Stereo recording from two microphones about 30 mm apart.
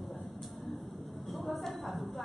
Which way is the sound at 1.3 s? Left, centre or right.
Centre.